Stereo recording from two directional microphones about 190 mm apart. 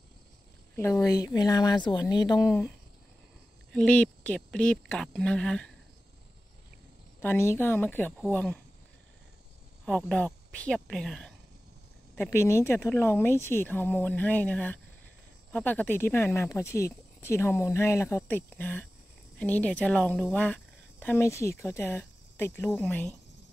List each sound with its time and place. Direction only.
0.7 s speech: 15° left (ahead or behind)
3.7 s speech: 5° left (ahead or behind)
7.2 s speech: 15° left (ahead or behind)
9.8 s speech: 5° left (ahead or behind)